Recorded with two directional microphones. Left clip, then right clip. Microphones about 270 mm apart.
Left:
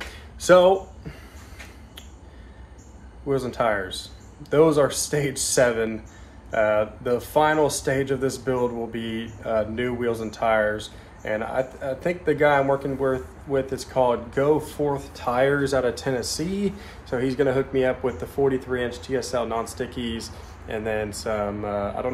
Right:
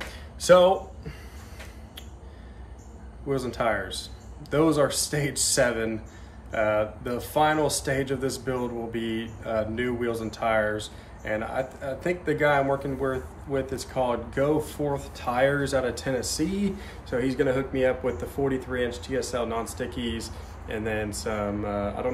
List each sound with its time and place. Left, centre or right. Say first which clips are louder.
0.4 s speech: left 2 dB; centre
3.3 s speech: left 3 dB; centre